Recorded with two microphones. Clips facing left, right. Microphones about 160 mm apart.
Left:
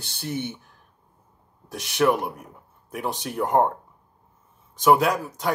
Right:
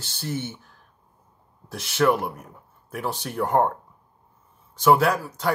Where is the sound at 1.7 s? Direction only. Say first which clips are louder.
Even; 15° left (ahead or behind).